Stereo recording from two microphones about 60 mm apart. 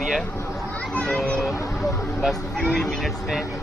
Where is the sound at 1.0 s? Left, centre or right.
Centre.